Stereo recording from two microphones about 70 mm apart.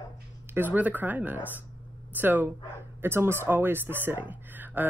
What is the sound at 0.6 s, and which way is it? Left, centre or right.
Speech, right.